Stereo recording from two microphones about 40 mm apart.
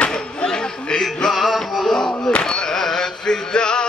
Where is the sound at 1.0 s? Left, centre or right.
Centre.